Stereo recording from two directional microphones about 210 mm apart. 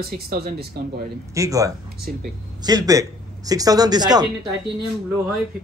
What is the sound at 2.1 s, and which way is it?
Speech, 40° right (ahead or behind).